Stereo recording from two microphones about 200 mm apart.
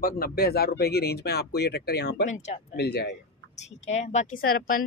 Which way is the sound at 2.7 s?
55° left (ahead or behind).